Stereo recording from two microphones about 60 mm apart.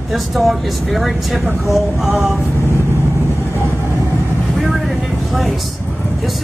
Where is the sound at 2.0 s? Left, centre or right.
Right.